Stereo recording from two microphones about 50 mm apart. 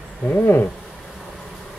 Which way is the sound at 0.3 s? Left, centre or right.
Left.